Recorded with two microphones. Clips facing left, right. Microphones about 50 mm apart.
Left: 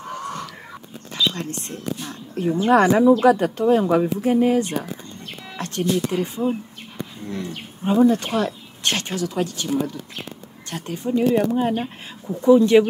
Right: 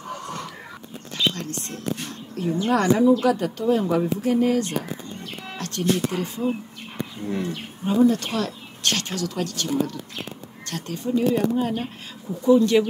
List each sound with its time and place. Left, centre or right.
1.3 s speech: left
5.6 s a sound: left
6.1 s speech: left
7.2 s speech: centre
7.8 s speech: left